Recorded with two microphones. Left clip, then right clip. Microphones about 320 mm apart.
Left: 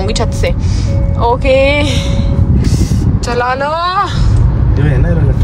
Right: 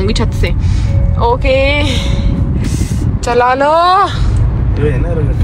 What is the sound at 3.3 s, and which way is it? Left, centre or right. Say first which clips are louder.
Speech: right 4 dB; centre.